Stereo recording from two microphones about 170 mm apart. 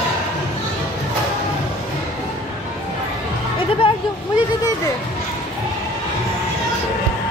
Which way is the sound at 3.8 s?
30° left (ahead or behind).